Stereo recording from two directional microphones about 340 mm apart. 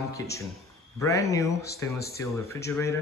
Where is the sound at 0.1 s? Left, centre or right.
Centre.